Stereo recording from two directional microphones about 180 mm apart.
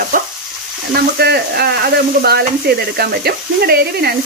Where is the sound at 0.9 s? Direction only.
65° right (ahead or behind).